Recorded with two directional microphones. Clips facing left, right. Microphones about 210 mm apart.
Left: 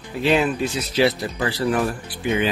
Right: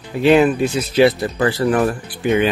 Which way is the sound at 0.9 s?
55° right (ahead or behind).